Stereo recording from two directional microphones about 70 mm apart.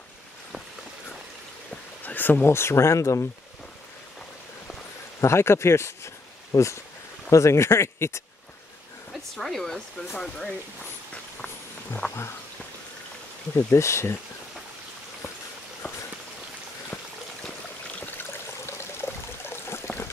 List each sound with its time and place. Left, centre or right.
2.0 s speech: left
5.2 s speech: left
9.3 s speech: centre
12.0 s frog: left
13.6 s speech: left
18.7 s a sound: left